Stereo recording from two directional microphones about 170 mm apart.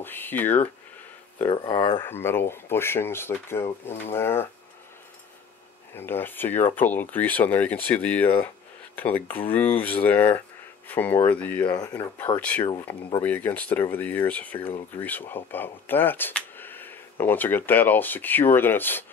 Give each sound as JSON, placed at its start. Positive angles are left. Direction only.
{"t": 0.0, "sound": "speech", "side_deg": 10}
{"t": 1.4, "sound": "speech", "side_deg": 30}
{"t": 2.0, "sound": "speech", "side_deg": 15}
{"t": 5.9, "sound": "speech", "side_deg": 10}